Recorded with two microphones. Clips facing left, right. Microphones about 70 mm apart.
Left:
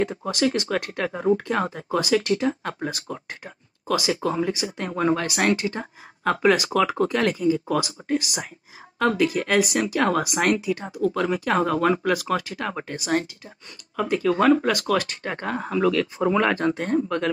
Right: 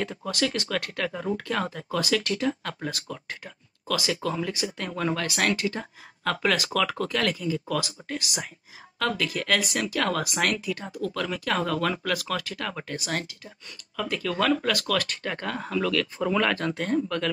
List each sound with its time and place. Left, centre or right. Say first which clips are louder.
0.0 s speech: left 5 dB; centre